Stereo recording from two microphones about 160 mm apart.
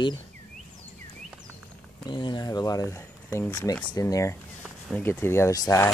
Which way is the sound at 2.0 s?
30° left (ahead or behind).